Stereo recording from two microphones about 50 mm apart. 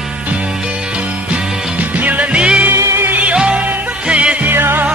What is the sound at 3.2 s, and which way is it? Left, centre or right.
Music, right.